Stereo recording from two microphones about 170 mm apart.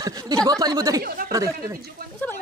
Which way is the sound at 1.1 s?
60° right (ahead or behind).